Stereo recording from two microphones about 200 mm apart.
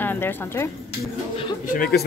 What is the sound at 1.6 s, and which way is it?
Speech, 45° left (ahead or behind).